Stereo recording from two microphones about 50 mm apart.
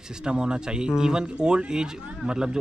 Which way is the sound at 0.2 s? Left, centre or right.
Centre.